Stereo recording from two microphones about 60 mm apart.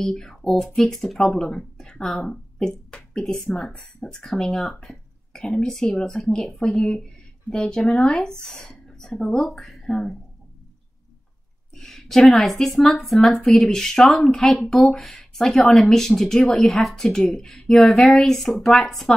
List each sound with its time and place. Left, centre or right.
0.0 s speech: centre
11.7 s speech: centre